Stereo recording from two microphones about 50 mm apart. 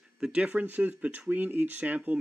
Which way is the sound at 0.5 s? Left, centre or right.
Right.